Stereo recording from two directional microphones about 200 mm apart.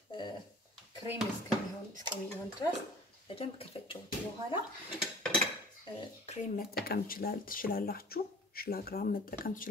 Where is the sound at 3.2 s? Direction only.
30° left (ahead or behind).